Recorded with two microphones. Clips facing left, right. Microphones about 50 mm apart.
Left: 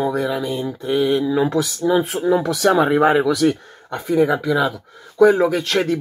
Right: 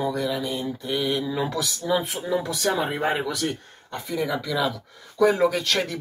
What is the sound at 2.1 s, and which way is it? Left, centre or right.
Speech, left.